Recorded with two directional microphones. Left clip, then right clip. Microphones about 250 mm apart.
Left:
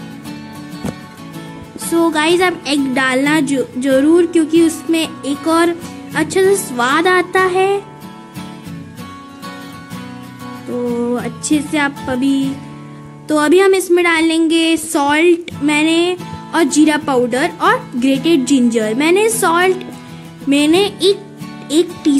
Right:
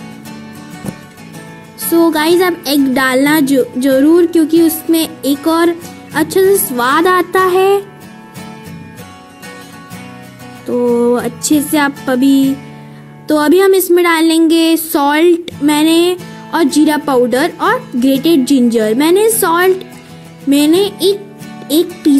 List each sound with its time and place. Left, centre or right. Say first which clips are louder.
1.9 s a woman's voice: right 3 dB; centre
11.0 s a woman's voice: right 7 dB; centre